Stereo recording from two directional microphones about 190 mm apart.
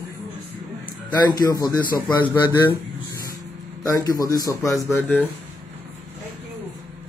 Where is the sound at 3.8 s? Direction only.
20° left (ahead or behind).